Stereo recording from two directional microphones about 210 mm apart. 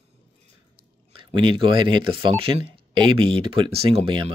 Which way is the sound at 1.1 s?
25° right (ahead or behind).